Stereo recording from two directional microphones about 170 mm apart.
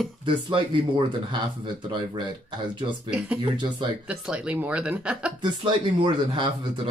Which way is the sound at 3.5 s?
25° right (ahead or behind).